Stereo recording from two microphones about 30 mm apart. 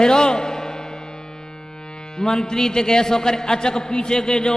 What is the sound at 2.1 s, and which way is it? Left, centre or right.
A man's voice, left.